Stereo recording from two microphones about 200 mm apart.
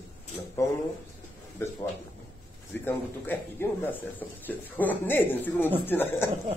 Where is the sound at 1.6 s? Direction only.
15° left (ahead or behind).